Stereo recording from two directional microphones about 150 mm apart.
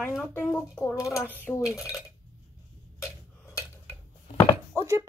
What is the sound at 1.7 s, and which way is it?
Speech, 20° left (ahead or behind).